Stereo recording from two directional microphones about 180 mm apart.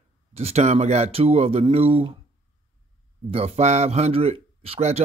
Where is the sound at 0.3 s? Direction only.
35° right (ahead or behind).